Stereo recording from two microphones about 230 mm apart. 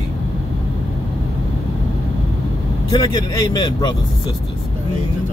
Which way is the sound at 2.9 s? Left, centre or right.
Centre.